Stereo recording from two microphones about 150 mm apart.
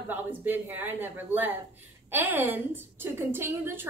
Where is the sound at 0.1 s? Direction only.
10° right (ahead or behind).